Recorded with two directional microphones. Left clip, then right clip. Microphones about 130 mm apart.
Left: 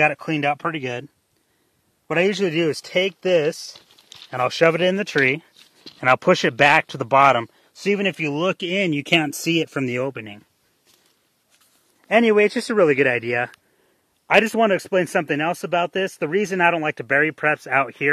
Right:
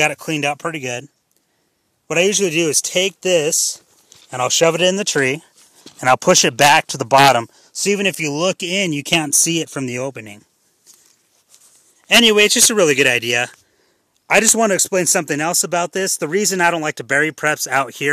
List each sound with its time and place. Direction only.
0.0 s speech: 40° right (ahead or behind)
2.0 s speech: 30° right (ahead or behind)
12.1 s speech: 45° right (ahead or behind)